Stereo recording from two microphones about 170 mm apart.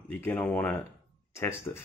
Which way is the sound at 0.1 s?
10° left (ahead or behind).